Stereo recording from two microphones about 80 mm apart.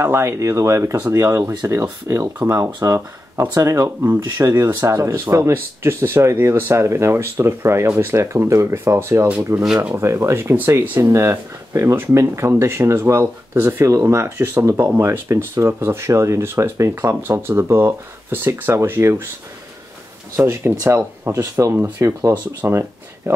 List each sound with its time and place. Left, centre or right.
0.0 s speech: right
20.6 s speech: right
21.7 s speech: right
22.7 s a sound: right